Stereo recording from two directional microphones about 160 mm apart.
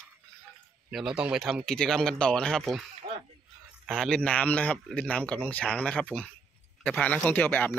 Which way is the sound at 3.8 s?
5° left (ahead or behind).